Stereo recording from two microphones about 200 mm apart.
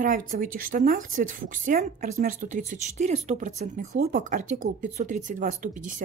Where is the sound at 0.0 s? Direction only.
40° right (ahead or behind).